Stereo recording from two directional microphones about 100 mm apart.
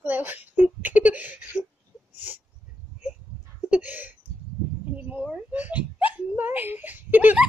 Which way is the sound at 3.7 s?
15° right (ahead or behind).